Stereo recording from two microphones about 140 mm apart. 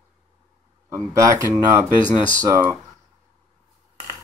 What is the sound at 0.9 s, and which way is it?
Speech, 20° right (ahead or behind).